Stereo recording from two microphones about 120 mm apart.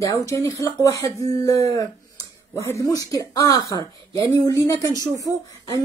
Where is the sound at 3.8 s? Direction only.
35° right (ahead or behind).